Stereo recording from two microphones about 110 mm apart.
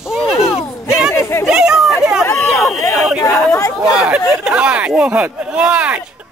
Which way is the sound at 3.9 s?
10° right (ahead or behind).